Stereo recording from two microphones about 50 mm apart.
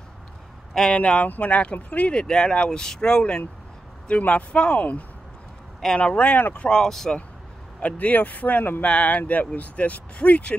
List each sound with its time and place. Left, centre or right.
0.7 s speech: centre
4.1 s speech: left
6.8 s speech: centre
7.8 s speech: left